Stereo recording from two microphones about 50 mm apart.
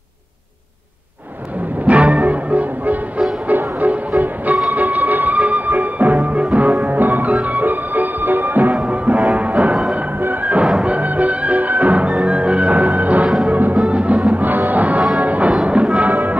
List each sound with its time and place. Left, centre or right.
1.9 s music: right
8.7 s music: right
16.1 s music: right